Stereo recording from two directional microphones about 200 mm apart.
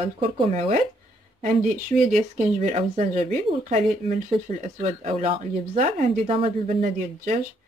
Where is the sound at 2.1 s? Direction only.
35° right (ahead or behind).